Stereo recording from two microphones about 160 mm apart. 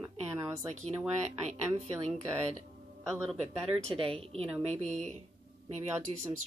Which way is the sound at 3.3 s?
40° right (ahead or behind).